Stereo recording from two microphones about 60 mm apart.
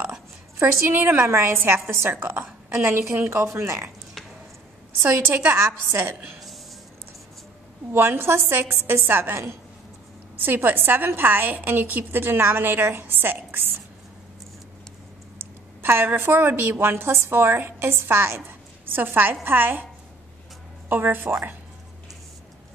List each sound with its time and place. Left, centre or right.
0.6 s a woman's voice: right
5.0 s a woman's voice: right
7.9 s a woman's voice: right
15.8 s a woman's voice: right
20.9 s a woman's voice: right